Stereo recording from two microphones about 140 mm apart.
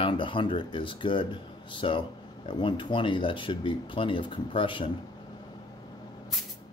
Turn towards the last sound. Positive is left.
turn(degrees=35)  # may be behind; listen again after turning